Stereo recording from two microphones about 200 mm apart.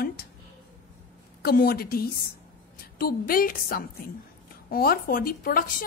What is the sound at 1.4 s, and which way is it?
A woman's voice, 50° left (ahead or behind).